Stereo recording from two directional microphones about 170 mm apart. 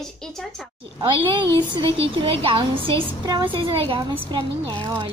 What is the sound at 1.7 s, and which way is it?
A woman's voice, 30° right (ahead or behind).